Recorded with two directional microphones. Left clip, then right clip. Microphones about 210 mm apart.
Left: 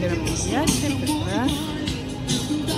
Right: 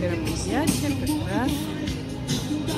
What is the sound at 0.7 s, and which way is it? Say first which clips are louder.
Speech: left 2 dB; 30° left (ahead or behind).